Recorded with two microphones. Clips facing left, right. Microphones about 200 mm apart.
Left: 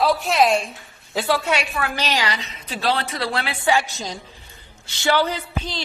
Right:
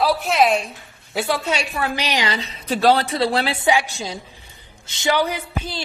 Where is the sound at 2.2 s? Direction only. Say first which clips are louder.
Right 4 dB; 30° right (ahead or behind).